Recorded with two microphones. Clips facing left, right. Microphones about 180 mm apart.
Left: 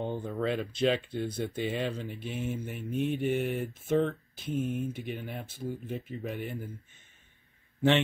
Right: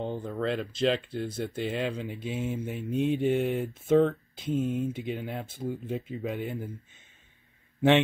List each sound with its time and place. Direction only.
0.0 s speech: 5° left (ahead or behind)
2.0 s speech: 15° right (ahead or behind)